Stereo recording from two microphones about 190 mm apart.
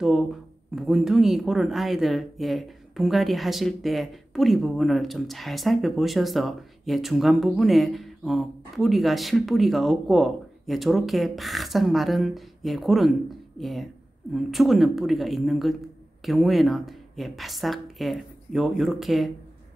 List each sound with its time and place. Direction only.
0.0 s speech: centre (ahead or behind)